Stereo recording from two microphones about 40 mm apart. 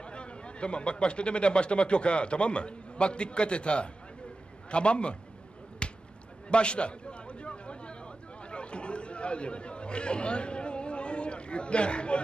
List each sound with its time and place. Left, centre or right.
0.0 s a man's voice: left
5.8 s basketball bounce: left
6.5 s a sound: left
8.5 s chatter: left